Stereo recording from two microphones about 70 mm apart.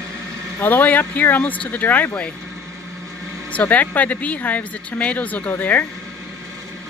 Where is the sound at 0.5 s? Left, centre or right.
Left.